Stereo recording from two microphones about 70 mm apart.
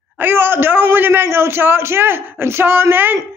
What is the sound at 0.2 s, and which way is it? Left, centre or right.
A man's voice, right.